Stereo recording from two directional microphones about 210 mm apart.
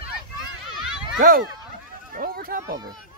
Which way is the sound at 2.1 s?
45° right (ahead or behind).